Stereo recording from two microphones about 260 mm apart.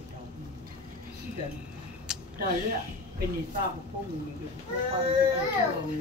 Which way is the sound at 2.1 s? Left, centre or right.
Centre.